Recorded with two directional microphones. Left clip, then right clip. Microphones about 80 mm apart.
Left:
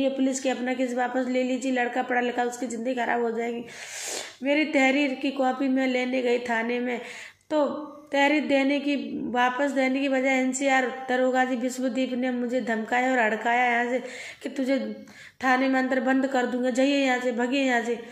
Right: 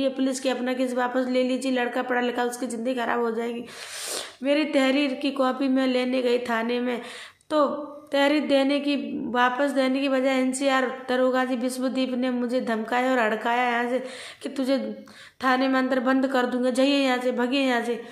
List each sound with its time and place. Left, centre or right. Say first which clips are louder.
0.0 s a woman's voice: even; right
8.1 s a woman's voice: right 1 dB; right
15.4 s a woman's voice: right 1 dB; right